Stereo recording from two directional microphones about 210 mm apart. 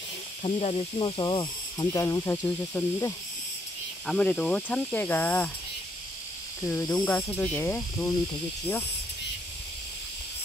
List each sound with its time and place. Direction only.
0.4 s speech: 30° left (ahead or behind); by 5.5 s 10° left (ahead or behind)
6.6 s speech: 15° left (ahead or behind)